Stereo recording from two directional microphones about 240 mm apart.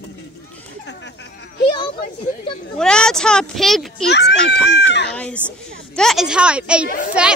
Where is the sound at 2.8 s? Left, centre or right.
Centre.